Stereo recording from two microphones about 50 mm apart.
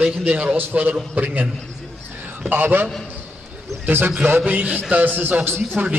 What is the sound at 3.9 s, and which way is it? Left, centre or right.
Speech, right.